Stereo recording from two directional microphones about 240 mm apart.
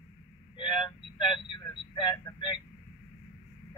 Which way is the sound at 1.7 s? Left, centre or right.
Centre.